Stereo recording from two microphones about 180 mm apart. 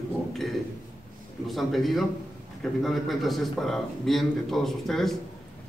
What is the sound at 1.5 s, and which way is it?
Speech, centre (ahead or behind).